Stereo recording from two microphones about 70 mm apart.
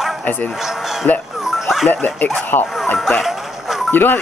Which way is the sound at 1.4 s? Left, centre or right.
Centre.